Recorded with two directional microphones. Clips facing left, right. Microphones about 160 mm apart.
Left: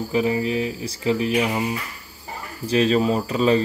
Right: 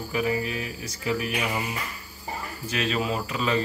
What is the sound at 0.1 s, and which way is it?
Speech, 25° left (ahead or behind).